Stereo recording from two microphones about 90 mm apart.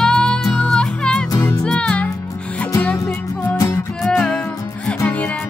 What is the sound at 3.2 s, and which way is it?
Music, 40° left (ahead or behind).